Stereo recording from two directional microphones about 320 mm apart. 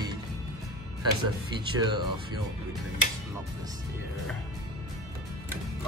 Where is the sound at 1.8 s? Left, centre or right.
Centre.